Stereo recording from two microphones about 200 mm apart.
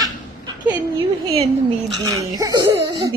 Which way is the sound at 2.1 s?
15° right (ahead or behind).